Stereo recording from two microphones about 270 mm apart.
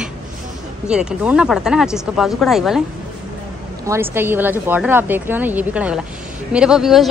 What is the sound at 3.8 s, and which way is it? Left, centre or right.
A woman's voice, centre.